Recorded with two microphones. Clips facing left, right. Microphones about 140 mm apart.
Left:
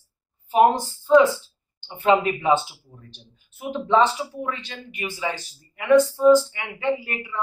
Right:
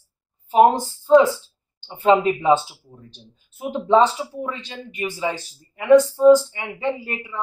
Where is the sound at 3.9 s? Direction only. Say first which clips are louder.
Right 3 dB; 30° right (ahead or behind).